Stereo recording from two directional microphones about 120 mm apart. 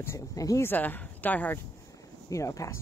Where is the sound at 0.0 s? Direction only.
25° left (ahead or behind).